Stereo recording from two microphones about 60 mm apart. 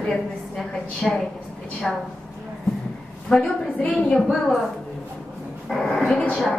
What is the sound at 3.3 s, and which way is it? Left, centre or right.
A woman's voice, centre.